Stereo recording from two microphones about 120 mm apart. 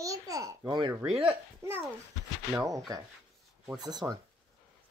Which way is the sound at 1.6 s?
20° right (ahead or behind).